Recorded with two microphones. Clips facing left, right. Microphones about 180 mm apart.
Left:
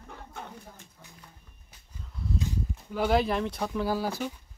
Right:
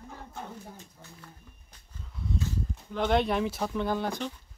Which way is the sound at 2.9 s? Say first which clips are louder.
Left 1 dB; 5° left (ahead or behind).